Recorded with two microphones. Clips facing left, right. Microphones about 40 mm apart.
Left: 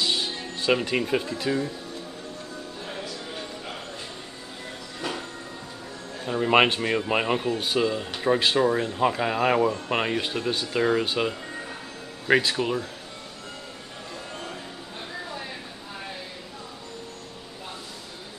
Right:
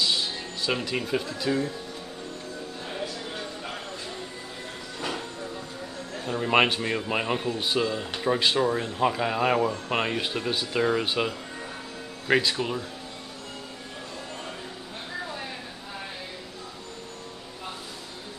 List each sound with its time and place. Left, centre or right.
0.0 s music: left
0.8 s speech: centre
6.2 s speech: centre
12.3 s speech: centre